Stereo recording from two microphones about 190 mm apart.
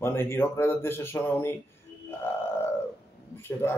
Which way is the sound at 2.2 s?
10° left (ahead or behind).